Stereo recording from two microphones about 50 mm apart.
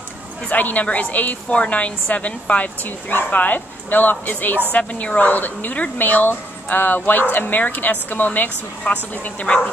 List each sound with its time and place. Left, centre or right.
0.5 s a woman's voice: left